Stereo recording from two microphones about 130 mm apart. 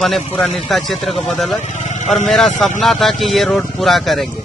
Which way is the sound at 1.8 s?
65° left (ahead or behind).